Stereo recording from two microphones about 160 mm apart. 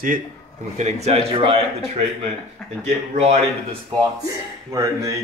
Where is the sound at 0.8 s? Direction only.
40° right (ahead or behind).